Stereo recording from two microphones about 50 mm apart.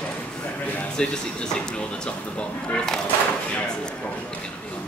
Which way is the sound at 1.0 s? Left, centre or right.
Centre.